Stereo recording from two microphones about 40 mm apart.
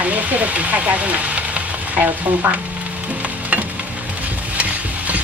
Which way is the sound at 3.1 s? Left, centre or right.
Right.